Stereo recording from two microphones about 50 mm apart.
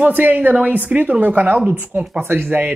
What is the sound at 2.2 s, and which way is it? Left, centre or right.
Speech, right.